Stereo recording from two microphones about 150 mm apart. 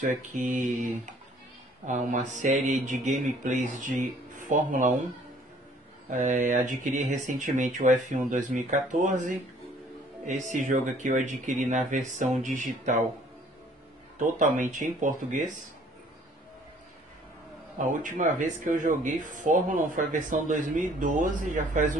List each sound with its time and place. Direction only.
0.3 s speech: 60° right (ahead or behind)
6.0 s speech: 60° right (ahead or behind)
14.2 s speech: 60° right (ahead or behind)
17.7 s speech: 60° right (ahead or behind)